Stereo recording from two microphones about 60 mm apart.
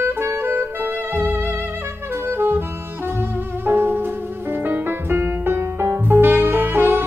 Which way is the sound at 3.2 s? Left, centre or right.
Right.